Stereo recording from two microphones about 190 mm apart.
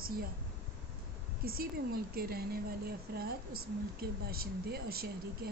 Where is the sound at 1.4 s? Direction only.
50° right (ahead or behind).